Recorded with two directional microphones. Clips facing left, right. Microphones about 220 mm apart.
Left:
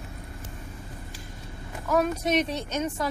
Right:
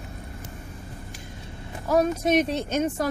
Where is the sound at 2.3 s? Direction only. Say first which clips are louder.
Right 4 dB; 50° right (ahead or behind).